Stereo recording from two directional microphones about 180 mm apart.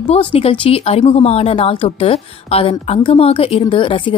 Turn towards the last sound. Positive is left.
turn(degrees=30)  # may be behind; listen again after turning